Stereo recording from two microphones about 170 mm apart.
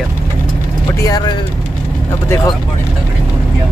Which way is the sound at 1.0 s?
25° left (ahead or behind).